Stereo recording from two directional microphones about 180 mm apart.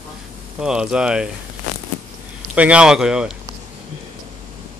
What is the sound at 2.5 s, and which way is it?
Speech, 5° right (ahead or behind).